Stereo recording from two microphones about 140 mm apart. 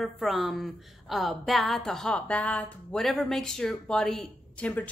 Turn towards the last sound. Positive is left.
turn(degrees=10)  # may be behind; listen again after turning